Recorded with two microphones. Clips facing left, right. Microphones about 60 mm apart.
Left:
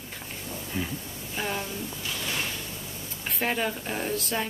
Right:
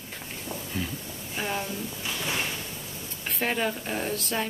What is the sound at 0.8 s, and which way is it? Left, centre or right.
Speech, left.